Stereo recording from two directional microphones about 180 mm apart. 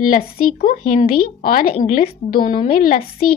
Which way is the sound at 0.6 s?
45° left (ahead or behind).